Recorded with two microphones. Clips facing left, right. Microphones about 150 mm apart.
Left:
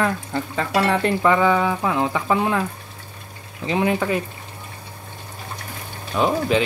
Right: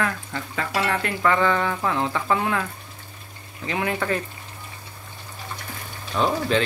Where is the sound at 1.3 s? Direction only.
10° left (ahead or behind).